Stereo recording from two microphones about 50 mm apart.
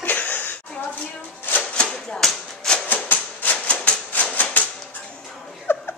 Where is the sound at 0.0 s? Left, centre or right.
Left.